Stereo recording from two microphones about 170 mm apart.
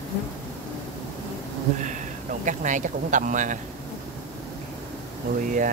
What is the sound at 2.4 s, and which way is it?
Speech, 45° right (ahead or behind).